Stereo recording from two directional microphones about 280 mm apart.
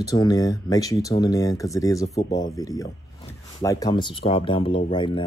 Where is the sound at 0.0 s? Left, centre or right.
Centre.